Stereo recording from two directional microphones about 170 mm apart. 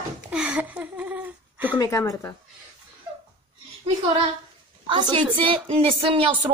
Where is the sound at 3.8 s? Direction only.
35° right (ahead or behind).